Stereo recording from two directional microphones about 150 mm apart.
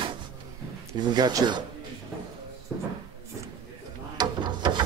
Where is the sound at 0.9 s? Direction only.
30° right (ahead or behind).